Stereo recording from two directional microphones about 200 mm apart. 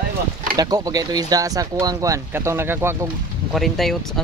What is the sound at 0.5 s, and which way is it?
Speech, 20° right (ahead or behind).